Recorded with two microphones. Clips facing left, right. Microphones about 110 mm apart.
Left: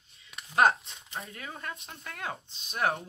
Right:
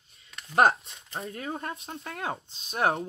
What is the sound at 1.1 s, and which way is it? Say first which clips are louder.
Speech: right 6 dB; 30° right (ahead or behind).